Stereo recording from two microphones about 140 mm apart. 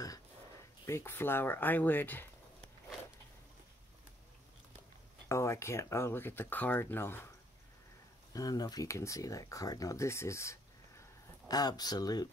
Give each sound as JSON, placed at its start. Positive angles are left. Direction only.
{"t": 0.8, "sound": "speech", "side_deg": 15}
{"t": 5.3, "sound": "speech", "side_deg": 20}
{"t": 8.3, "sound": "speech", "side_deg": 25}